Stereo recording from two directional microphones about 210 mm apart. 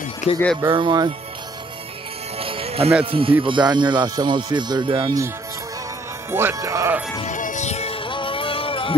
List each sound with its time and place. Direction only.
0.3 s speech: 25° left (ahead or behind)
0.6 s speech: 20° right (ahead or behind)
2.3 s music: 25° right (ahead or behind)
3.1 s speech: 25° right (ahead or behind)
6.3 s speech: 10° right (ahead or behind)
7.2 s music: 35° left (ahead or behind)